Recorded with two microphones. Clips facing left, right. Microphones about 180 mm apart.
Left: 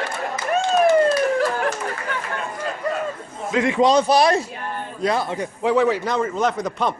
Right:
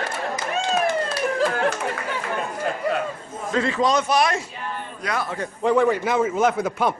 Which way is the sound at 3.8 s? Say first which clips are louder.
Left 5 dB; 30° left (ahead or behind).